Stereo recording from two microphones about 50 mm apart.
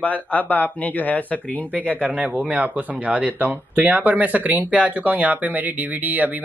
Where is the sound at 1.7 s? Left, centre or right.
Right.